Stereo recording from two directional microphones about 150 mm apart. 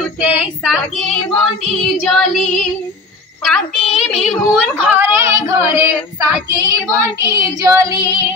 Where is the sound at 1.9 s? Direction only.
Centre (ahead or behind).